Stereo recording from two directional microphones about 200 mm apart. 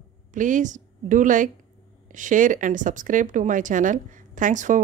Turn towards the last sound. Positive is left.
turn(degrees=-40)  # may be behind; listen again after turning